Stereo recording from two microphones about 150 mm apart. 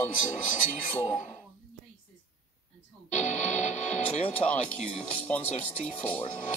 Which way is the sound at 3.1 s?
50° left (ahead or behind).